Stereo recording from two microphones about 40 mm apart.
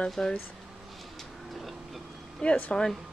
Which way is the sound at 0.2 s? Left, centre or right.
Left.